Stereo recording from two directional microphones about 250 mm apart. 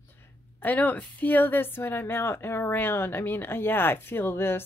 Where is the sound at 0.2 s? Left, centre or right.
Centre.